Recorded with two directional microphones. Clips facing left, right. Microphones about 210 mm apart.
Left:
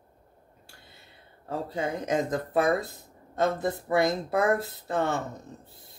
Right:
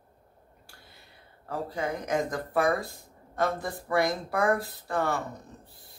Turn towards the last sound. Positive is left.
turn(degrees=25)  # may be behind; listen again after turning